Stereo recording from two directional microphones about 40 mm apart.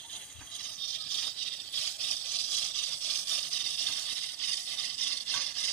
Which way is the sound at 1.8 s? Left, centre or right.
Left.